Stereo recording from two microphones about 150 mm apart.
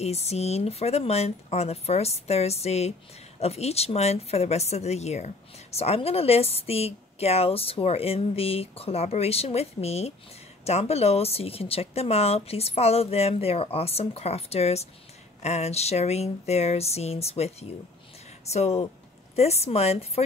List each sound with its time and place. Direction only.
0.0 s a woman's voice: 45° left (ahead or behind)